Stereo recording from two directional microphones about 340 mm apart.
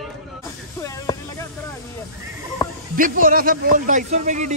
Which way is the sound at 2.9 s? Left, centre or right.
Right.